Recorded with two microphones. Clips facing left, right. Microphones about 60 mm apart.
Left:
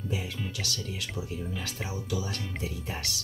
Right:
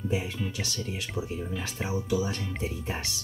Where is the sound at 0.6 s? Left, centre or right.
Right.